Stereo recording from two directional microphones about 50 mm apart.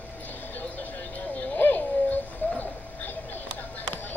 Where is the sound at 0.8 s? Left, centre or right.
Left.